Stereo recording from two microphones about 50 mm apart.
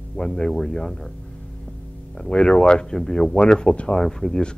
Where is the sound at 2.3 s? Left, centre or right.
Centre.